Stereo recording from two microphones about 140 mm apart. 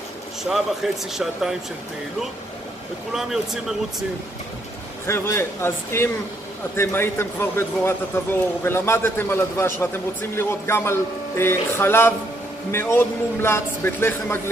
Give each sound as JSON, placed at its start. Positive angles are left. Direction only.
{"t": 0.4, "sound": "speech", "side_deg": 0}
{"t": 3.1, "sound": "speech", "side_deg": -5}
{"t": 5.0, "sound": "a man's voice", "side_deg": 20}